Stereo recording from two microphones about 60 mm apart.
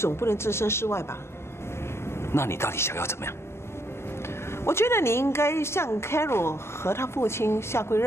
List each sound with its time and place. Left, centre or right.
0.0 s speech: left
2.3 s speech: left
4.6 s speech: left